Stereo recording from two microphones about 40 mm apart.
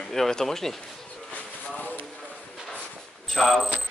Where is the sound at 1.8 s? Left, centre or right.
Left.